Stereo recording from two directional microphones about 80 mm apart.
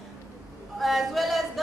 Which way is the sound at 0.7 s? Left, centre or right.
Centre.